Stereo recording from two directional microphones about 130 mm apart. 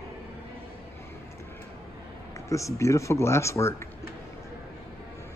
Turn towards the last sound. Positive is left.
turn(degrees=20)  # may be behind; listen again after turning